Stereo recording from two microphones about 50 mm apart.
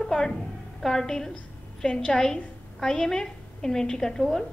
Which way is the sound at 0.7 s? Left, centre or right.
Centre.